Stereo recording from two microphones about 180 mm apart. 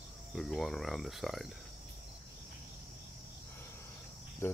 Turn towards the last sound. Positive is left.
turn(degrees=15)  # may be behind; listen again after turning